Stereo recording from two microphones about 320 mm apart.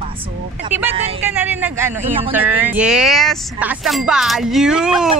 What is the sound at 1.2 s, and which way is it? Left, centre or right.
Speech, centre.